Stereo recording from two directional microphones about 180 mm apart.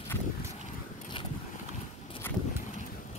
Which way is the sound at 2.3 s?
10° left (ahead or behind).